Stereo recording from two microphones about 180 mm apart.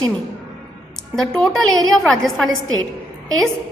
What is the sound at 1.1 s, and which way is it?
A woman's voice, 5° left (ahead or behind).